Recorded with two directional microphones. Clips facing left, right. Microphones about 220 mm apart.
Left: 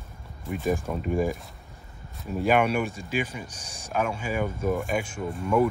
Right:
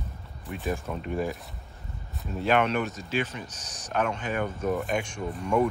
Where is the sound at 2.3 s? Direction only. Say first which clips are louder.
Left 2 dB; 10° left (ahead or behind).